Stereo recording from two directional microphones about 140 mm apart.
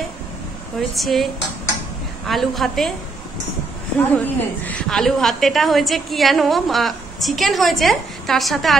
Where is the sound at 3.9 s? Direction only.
10° left (ahead or behind).